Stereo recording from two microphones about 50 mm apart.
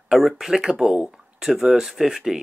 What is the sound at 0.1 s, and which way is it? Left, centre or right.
Speech, centre.